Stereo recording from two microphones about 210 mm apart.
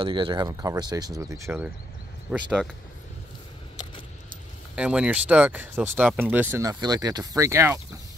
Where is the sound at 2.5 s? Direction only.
5° left (ahead or behind).